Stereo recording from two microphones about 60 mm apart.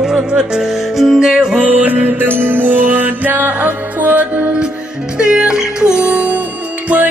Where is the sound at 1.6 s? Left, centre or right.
Right.